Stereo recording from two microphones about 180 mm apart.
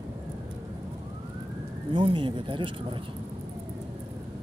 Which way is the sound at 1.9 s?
30° right (ahead or behind).